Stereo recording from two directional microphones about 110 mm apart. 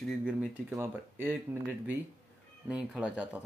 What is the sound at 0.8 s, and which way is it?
Speech, 20° right (ahead or behind).